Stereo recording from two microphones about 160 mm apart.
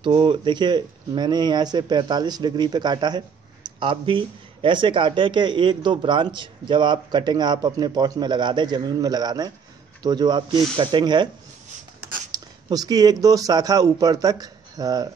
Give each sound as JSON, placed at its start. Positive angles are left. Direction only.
{"t": 0.0, "sound": "speech", "side_deg": -30}
{"t": 12.3, "sound": "speech", "side_deg": -25}